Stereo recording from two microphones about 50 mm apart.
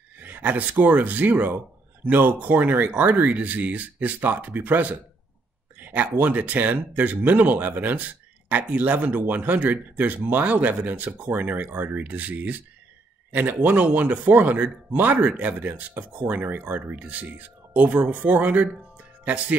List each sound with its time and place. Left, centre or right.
0.2 s speech: right